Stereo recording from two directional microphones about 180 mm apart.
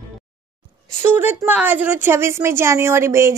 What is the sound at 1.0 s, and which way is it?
A woman's voice, 10° right (ahead or behind).